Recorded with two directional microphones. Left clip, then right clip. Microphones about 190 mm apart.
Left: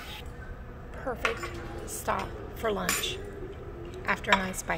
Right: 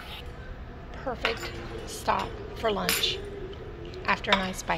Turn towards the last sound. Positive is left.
turn(degrees=10)  # may be behind; listen again after turning